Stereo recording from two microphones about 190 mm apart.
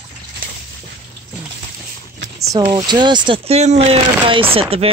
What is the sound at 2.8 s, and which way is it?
Speech, 25° right (ahead or behind).